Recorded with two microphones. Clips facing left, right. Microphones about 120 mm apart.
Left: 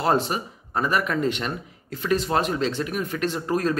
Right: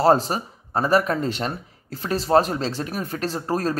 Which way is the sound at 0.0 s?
35° right (ahead or behind).